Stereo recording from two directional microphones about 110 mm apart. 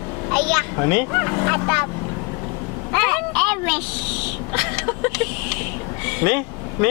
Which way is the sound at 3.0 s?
5° left (ahead or behind).